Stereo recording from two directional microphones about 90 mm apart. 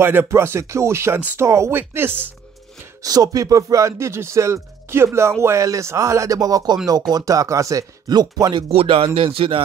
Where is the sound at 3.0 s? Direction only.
40° right (ahead or behind).